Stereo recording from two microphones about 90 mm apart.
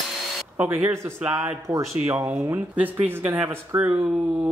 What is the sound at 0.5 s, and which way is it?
Speech, 20° right (ahead or behind).